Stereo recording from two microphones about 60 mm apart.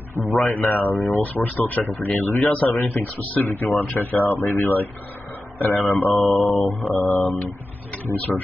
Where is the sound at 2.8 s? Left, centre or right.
Left.